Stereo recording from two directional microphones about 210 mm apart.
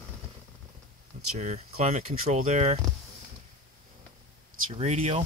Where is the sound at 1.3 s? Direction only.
35° right (ahead or behind).